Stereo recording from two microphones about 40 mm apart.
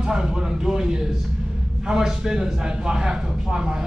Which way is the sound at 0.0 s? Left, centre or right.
Right.